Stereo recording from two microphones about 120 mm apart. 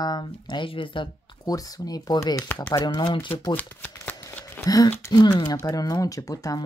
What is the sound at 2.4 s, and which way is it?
Speech, 20° left (ahead or behind).